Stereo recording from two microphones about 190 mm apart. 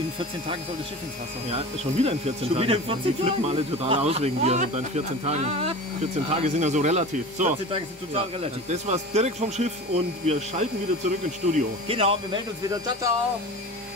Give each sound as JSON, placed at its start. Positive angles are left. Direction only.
{"t": 1.5, "sound": "speech", "side_deg": -35}
{"t": 12.6, "sound": "speech", "side_deg": -15}